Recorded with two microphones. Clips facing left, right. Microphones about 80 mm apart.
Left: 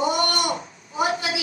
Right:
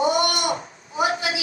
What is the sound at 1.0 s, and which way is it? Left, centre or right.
Speech, left.